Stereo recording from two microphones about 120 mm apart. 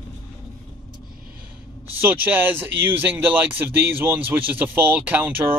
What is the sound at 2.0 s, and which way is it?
Speech, 15° right (ahead or behind).